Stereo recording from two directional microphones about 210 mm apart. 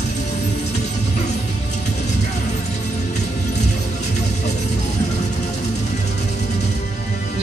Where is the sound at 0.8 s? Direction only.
35° left (ahead or behind).